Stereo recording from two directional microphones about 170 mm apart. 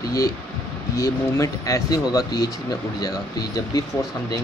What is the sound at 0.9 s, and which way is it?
Speech, 20° left (ahead or behind).